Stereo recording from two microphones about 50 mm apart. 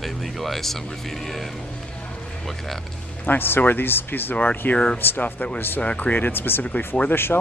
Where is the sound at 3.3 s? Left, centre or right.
Left.